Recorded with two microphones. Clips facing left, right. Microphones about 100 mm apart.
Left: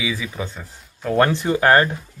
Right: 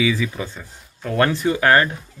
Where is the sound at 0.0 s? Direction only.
10° left (ahead or behind).